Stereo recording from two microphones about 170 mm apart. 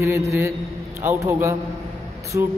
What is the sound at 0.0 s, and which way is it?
A man's voice, 15° right (ahead or behind).